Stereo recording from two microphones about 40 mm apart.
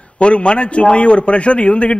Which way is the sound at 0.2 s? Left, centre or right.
Left.